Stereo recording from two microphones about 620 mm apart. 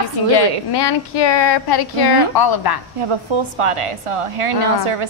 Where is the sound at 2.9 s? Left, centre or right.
Right.